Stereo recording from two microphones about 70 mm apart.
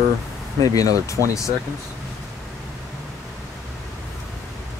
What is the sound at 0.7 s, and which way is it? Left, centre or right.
Speech, left.